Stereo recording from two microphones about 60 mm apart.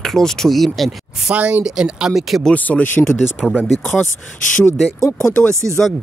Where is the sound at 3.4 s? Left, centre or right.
Centre.